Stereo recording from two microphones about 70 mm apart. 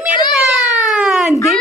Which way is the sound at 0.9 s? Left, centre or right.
Centre.